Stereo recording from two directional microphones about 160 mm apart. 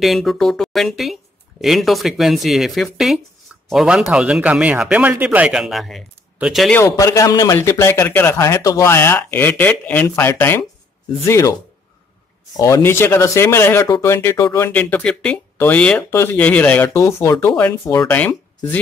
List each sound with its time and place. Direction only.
0.0 s speech: centre (ahead or behind)
6.8 s speech: 20° left (ahead or behind)
12.5 s speech: 20° left (ahead or behind)